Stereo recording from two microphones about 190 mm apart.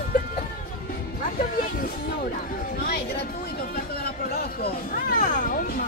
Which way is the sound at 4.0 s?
55° left (ahead or behind).